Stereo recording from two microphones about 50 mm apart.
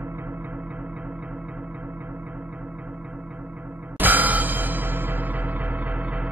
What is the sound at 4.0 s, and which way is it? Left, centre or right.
Music, right.